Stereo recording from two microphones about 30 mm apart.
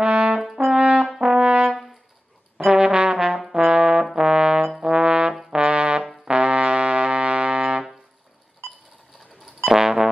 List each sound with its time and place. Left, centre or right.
0.0 s brass instrument: right
0.7 s brass instrument: right
1.2 s brass instrument: right
2.7 s trombone: right
3.5 s brass instrument: right
4.0 s brass instrument: centre
4.3 s trombone: right
5.6 s brass instrument: right
9.7 s brass instrument: centre